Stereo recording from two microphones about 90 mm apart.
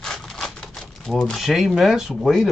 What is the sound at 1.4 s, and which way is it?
Speech, centre (ahead or behind).